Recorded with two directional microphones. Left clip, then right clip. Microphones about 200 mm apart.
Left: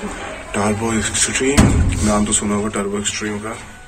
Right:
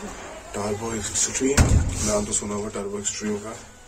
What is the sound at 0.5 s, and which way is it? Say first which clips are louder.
Speech: left 9 dB; 10° right (ahead or behind).